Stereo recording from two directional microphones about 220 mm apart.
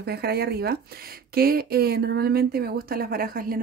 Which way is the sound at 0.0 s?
45° right (ahead or behind).